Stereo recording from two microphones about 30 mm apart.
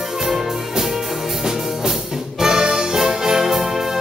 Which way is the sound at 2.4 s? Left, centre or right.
Centre.